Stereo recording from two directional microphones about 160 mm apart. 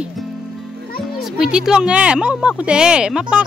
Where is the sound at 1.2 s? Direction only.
5° right (ahead or behind).